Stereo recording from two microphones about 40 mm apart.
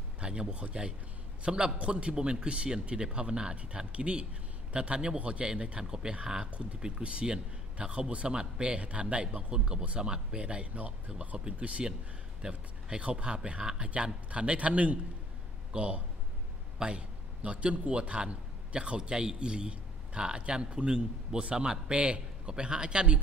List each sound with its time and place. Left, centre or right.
0.2 s speech: right
11.1 s a man's voice: right
21.9 s a man's voice: right
22.5 s speech: right